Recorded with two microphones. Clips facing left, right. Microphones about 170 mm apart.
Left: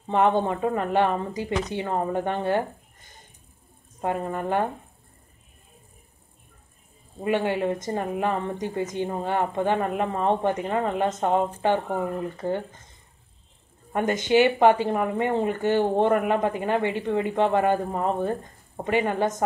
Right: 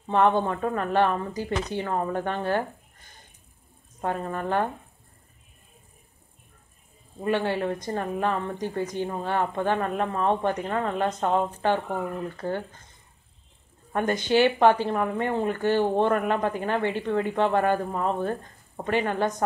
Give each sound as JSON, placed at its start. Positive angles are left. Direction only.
{"t": 0.1, "sound": "speech", "side_deg": 15}
{"t": 4.0, "sound": "speech", "side_deg": 15}
{"t": 7.2, "sound": "speech", "side_deg": 15}
{"t": 13.9, "sound": "speech", "side_deg": 15}
{"t": 18.8, "sound": "speech", "side_deg": 15}